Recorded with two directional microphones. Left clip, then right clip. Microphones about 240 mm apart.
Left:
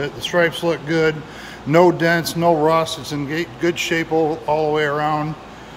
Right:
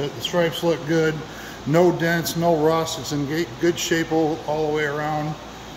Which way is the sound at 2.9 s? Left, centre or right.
Left.